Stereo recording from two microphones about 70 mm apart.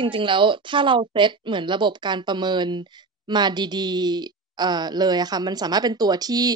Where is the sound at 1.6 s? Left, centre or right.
Right.